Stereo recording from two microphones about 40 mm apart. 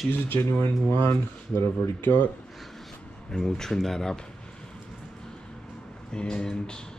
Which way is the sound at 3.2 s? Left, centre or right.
Centre.